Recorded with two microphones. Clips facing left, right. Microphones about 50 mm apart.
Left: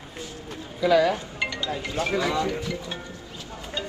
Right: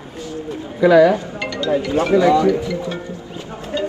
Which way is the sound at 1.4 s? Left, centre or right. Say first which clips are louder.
Right 5 dB; centre.